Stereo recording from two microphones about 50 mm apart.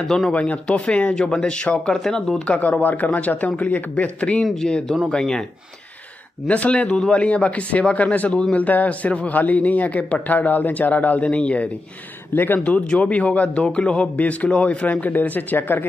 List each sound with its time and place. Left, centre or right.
0.0 s speech: centre
0.3 s speech: left
2.0 s speech: centre
2.4 s speech: left
6.4 s speech: left
8.5 s speech: left